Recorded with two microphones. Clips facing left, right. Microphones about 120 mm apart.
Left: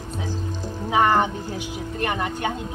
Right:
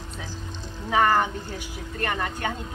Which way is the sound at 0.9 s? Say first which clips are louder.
Left 2 dB; 20° left (ahead or behind).